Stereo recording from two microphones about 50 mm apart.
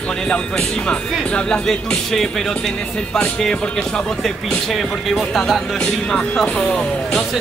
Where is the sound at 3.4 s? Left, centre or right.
Centre.